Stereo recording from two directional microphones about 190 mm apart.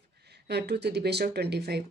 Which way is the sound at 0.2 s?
60° right (ahead or behind).